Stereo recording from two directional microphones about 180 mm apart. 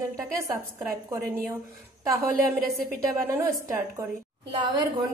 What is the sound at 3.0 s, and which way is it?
Speech, 15° right (ahead or behind).